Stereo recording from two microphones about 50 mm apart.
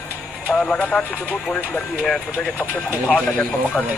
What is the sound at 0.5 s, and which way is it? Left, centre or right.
Speech, left.